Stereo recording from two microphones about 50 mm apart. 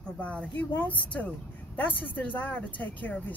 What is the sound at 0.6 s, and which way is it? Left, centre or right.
Speech, left.